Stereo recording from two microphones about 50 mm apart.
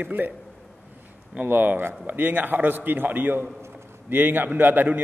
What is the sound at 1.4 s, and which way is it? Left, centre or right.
A man's voice, right.